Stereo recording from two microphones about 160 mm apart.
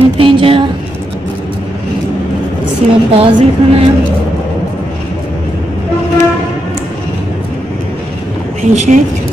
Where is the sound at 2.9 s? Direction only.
35° right (ahead or behind).